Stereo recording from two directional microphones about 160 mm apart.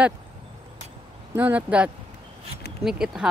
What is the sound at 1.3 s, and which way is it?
Speech, 10° right (ahead or behind).